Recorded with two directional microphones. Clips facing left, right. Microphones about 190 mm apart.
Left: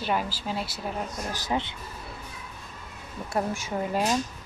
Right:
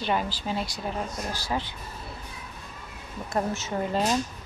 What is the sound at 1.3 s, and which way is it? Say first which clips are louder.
Speech: left 3 dB; 20° left (ahead or behind).